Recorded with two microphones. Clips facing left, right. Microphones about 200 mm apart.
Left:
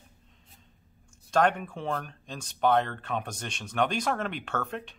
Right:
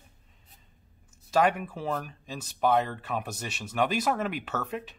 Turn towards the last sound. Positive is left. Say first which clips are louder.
# even
turn(degrees=-5)  # may be behind; listen again after turning